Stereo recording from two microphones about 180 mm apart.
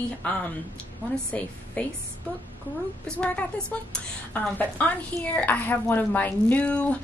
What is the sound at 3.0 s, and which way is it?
Speech, 5° left (ahead or behind).